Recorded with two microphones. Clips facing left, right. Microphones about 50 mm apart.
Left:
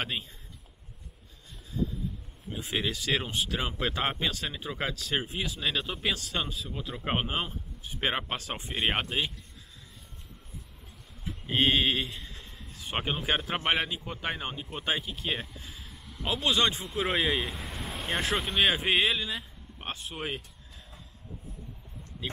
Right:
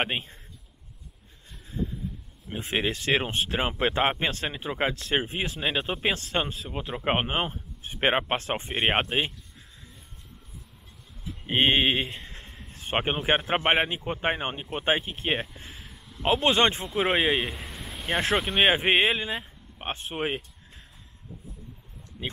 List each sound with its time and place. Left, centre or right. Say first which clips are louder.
0.0 s speech: right 5 dB; right
2.5 s speech: right 4 dB; right
11.4 s a sound: right 3 dB; right
12.8 s speech: right 5 dB; right
17.4 s speech: right 3 dB; centre
17.6 s vehicle: left 2 dB; centre
18.3 s speech: right 4 dB; centre
18.6 s speech: right 4 dB; right